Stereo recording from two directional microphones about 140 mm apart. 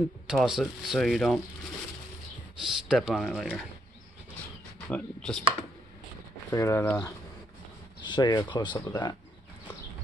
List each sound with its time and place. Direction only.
0.3 s speech: 5° right (ahead or behind)
2.6 s speech: 5° right (ahead or behind)
4.8 s speech: 5° left (ahead or behind)
6.5 s speech: 20° left (ahead or behind)